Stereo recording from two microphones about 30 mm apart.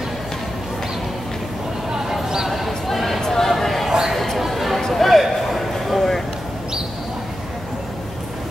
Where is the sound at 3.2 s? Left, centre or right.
Centre.